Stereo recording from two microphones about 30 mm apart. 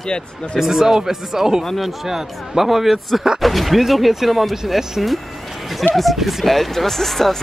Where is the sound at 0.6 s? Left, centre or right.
Centre.